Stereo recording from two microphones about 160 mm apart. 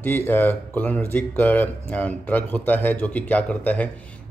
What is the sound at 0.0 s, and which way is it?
Speech, 15° left (ahead or behind).